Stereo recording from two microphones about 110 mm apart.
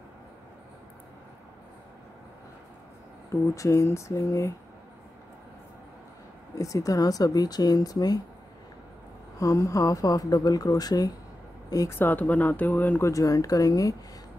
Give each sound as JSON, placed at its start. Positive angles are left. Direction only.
{"t": 3.3, "sound": "speech", "side_deg": 30}
{"t": 6.6, "sound": "speech", "side_deg": 30}
{"t": 9.4, "sound": "speech", "side_deg": 30}
{"t": 11.9, "sound": "speech", "side_deg": 15}
{"t": 13.1, "sound": "speech", "side_deg": 30}